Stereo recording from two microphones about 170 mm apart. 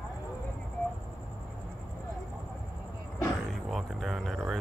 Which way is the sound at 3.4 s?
Centre (ahead or behind).